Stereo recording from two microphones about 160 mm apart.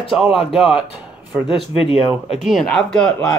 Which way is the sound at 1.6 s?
35° left (ahead or behind).